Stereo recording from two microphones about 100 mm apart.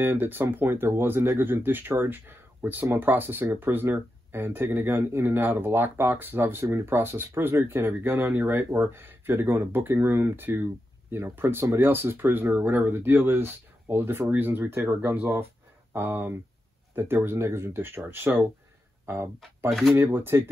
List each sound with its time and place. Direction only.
0.0 s speech: 20° right (ahead or behind)
19.9 s speech: 20° right (ahead or behind)